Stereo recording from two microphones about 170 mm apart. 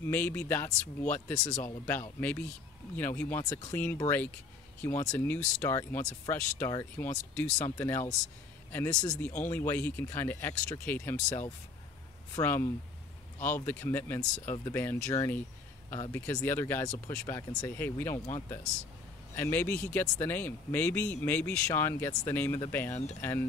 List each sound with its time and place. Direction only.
0.0 s speech: 10° left (ahead or behind)
19.3 s speech: 10° left (ahead or behind)